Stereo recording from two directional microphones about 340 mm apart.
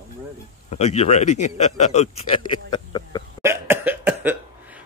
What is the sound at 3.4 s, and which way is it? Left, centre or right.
Cough, centre.